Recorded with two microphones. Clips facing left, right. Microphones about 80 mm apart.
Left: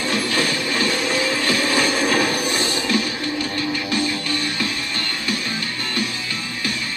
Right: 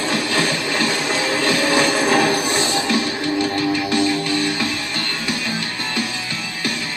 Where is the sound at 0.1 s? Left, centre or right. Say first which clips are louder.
Right 1 dB; right.